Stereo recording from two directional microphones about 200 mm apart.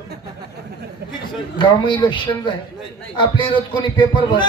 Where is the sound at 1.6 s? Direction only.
25° left (ahead or behind).